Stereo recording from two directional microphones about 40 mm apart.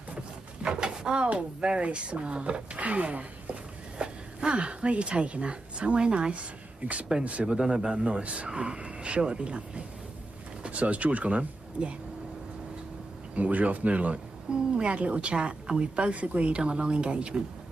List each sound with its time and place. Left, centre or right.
0.6 s pigeon: right
1.6 s speech: right
6.8 s speech: right
7.2 s speech: right
7.6 s speech: centre
7.9 s speech: right
13.3 s speech: right
14.5 s speech: right
16.0 s speech: right